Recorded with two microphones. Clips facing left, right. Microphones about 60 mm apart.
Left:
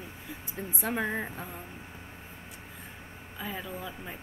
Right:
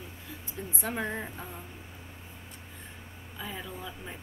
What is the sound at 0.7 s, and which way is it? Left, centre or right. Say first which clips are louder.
Speech: left 2 dB; centre.